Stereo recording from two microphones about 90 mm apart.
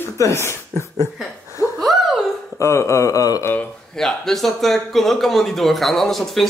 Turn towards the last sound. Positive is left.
turn(degrees=0)  # may be behind; listen again after turning